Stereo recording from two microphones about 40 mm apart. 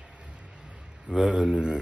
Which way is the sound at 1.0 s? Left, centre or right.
Right.